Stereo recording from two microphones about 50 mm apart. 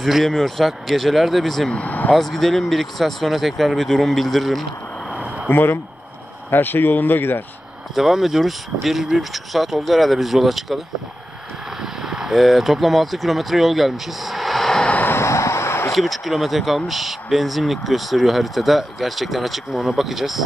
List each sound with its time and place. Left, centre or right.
0.0 s speech: centre
1.7 s speech: left
2.1 s speech: centre
5.5 s speech: left
7.9 s speech: centre
11.8 s speech: centre
15.0 s a sound: left
15.9 s speech: centre